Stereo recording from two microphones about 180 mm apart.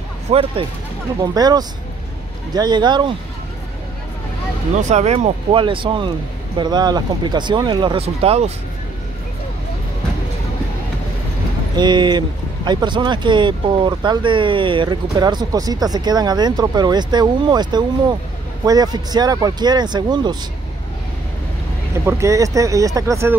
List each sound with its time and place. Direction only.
0.3 s speech: 30° right (ahead or behind)
4.8 s speech: 40° right (ahead or behind)
11.7 s speech: 25° right (ahead or behind)
21.9 s speech: 15° right (ahead or behind)